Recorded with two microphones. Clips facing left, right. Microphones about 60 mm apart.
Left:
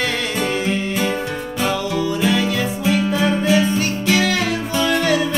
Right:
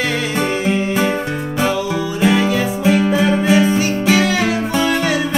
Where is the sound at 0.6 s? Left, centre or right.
Centre.